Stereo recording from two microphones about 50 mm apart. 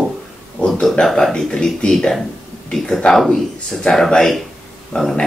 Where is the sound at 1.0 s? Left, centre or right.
Centre.